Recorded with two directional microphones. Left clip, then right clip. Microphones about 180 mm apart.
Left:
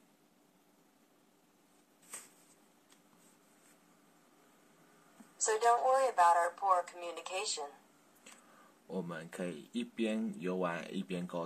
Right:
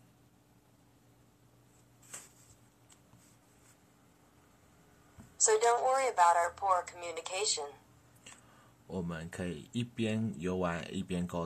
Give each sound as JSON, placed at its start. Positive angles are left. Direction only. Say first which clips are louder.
{"t": 5.4, "sound": "a woman's voice", "louder": "right 2 dB", "side_deg": -15}
{"t": 8.9, "sound": "speech", "louder": "right 1 dB", "side_deg": 0}